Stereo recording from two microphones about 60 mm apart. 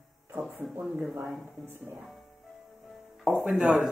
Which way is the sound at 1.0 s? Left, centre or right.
Centre.